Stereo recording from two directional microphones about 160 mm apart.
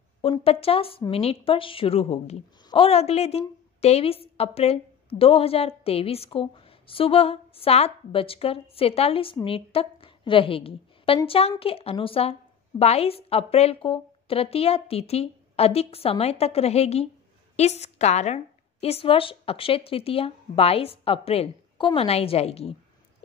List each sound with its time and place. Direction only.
0.2 s a woman's voice: 35° left (ahead or behind)